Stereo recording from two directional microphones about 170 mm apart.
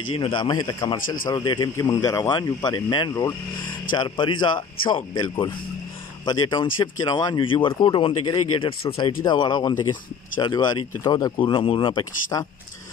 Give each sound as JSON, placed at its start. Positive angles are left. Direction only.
{"t": 0.1, "sound": "speech", "side_deg": 30}